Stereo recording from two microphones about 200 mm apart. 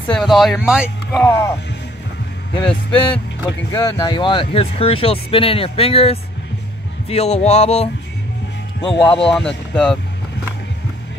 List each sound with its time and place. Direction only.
0.1 s speech: centre (ahead or behind)
1.2 s speech: 15° left (ahead or behind)
7.1 s music: 30° left (ahead or behind)
9.0 s speech: 5° left (ahead or behind)